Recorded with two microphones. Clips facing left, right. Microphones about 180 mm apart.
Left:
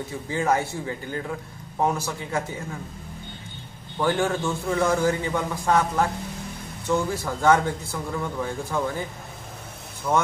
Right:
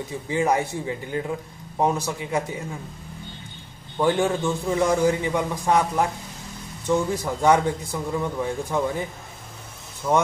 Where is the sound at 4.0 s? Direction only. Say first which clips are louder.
Right 2 dB; 20° right (ahead or behind).